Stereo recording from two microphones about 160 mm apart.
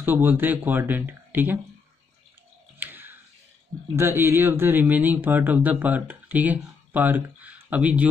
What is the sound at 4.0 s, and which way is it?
Speech, 15° right (ahead or behind).